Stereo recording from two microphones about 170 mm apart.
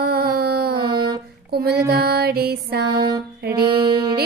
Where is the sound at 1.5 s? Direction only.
65° right (ahead or behind).